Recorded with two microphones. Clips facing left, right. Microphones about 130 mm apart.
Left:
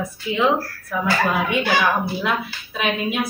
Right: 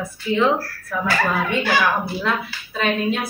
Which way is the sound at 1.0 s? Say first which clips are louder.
Left 1 dB; 15° left (ahead or behind).